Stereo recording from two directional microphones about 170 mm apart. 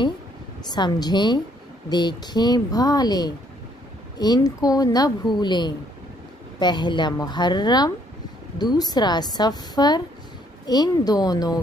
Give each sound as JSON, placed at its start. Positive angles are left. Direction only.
{"t": 0.7, "sound": "speech", "side_deg": 25}